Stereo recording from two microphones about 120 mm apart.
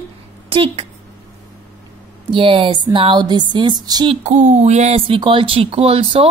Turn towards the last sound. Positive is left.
turn(degrees=-50)  # may be behind; listen again after turning